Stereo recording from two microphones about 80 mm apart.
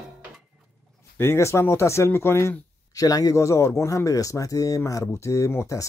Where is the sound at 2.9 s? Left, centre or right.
Left.